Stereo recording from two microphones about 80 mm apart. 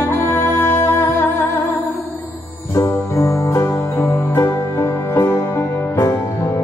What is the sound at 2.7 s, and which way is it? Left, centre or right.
Music, left.